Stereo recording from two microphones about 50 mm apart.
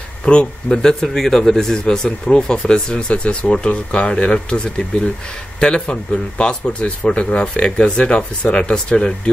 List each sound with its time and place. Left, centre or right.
0.2 s speech: centre
1.0 s speech: centre